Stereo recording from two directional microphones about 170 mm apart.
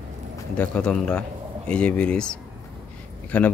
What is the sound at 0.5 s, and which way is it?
Speech, 5° left (ahead or behind).